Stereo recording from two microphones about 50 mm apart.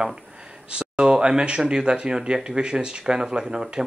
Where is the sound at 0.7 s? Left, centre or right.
Centre.